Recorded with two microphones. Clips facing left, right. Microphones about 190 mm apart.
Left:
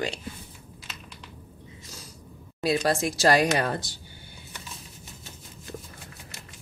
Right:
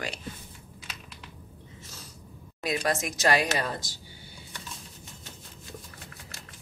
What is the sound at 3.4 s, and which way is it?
Speech, 60° left (ahead or behind).